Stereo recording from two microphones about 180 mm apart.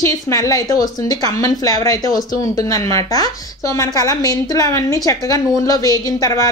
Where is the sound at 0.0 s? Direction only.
15° left (ahead or behind).